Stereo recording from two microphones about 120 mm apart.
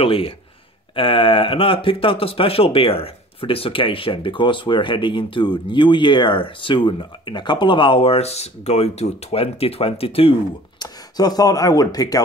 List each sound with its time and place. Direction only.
0.0 s speech: 50° left (ahead or behind)
10.8 s speech: 35° left (ahead or behind)